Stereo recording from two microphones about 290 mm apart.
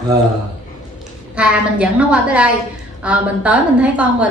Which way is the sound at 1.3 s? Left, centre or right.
Centre.